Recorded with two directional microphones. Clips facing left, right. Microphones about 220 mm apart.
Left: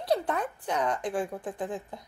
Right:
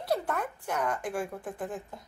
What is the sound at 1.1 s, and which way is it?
Speech, 20° left (ahead or behind).